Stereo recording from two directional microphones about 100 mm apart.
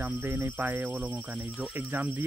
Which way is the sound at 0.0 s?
15° right (ahead or behind).